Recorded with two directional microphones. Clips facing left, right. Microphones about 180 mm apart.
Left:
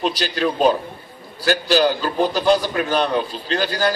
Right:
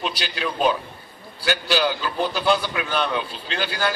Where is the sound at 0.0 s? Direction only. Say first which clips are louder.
Left 7 dB; 40° left (ahead or behind).